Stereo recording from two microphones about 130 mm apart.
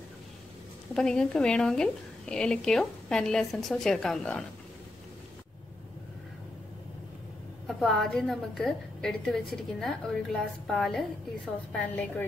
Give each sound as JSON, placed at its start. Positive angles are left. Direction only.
{"t": 0.9, "sound": "a woman's voice", "side_deg": 5}
{"t": 7.6, "sound": "a woman's voice", "side_deg": 0}
{"t": 11.9, "sound": "a woman's voice", "side_deg": 15}